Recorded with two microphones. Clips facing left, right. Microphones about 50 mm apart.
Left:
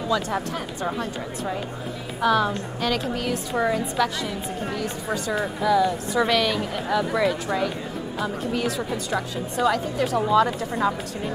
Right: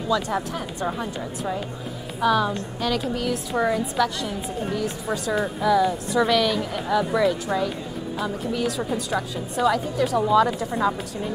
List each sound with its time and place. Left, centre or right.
0.1 s speech: centre
2.1 s a woman's voice: centre
8.6 s speech: centre